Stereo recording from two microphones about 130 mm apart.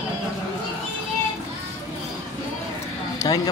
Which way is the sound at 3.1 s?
30° left (ahead or behind).